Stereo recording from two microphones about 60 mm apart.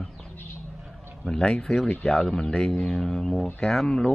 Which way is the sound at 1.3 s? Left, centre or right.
Centre.